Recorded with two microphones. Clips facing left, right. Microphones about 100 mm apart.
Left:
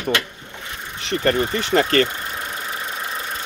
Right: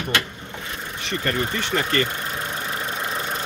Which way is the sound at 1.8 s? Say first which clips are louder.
Left 6 dB; 60° left (ahead or behind).